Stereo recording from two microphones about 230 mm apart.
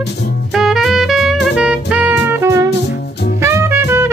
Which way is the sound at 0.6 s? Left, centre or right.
Centre.